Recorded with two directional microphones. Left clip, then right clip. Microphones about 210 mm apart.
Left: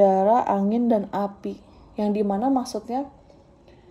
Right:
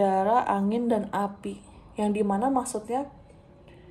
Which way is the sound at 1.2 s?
15° right (ahead or behind).